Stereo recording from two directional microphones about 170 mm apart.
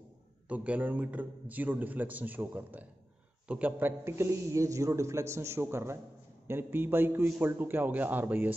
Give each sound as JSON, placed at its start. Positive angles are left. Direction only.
{"t": 0.5, "sound": "a man's voice", "side_deg": -10}